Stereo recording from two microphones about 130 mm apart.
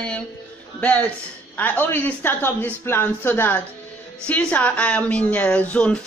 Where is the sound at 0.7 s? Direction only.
10° left (ahead or behind).